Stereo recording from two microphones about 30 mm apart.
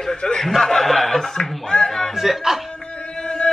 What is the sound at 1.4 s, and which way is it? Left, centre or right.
Music, left.